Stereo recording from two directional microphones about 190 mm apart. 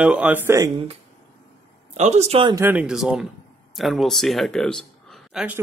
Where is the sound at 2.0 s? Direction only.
35° right (ahead or behind).